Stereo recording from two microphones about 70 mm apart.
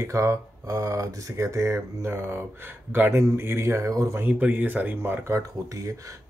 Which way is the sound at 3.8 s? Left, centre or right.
Right.